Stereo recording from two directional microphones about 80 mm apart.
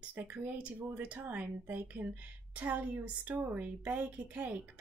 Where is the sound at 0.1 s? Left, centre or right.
Right.